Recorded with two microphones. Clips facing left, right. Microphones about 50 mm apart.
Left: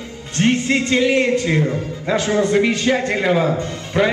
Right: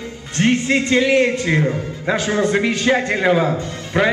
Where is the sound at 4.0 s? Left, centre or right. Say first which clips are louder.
Even; centre.